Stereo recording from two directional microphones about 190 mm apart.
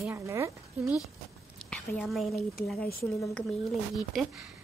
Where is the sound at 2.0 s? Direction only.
Centre (ahead or behind).